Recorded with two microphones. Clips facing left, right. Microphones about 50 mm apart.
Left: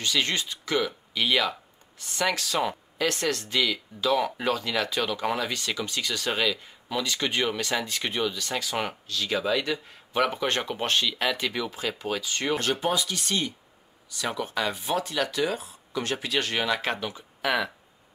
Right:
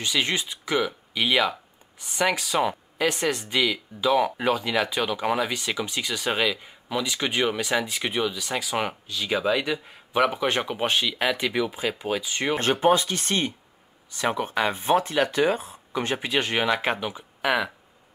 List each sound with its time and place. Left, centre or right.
0.0 s speech: centre
12.5 s speech: right
17.5 s speech: centre